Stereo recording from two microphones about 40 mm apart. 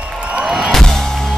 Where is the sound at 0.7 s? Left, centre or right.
Centre.